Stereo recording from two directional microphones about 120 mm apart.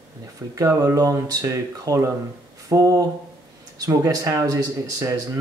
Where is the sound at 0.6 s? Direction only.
25° right (ahead or behind).